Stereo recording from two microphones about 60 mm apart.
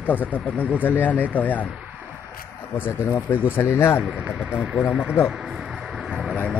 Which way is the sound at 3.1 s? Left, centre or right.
Left.